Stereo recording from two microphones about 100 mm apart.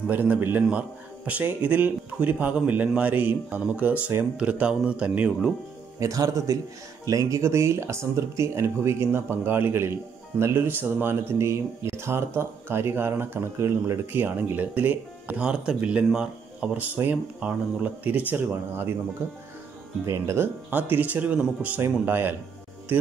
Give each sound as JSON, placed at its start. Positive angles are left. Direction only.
{"t": 0.1, "sound": "a man's voice", "side_deg": -20}
{"t": 5.9, "sound": "speech", "side_deg": -35}
{"t": 20.1, "sound": "speech", "side_deg": -25}